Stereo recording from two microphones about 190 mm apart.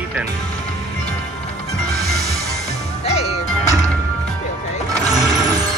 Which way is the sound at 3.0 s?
35° left (ahead or behind).